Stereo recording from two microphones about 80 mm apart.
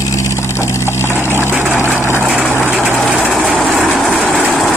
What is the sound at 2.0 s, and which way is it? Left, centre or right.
Vehicle, left.